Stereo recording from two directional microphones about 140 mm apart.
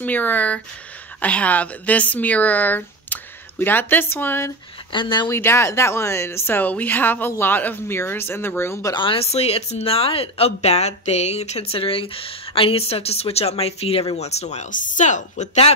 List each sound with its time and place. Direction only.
0.0 s speech: 10° left (ahead or behind)
4.9 s speech: 35° left (ahead or behind)
5.3 s speech: 20° left (ahead or behind)
8.9 s a woman's voice: 40° left (ahead or behind)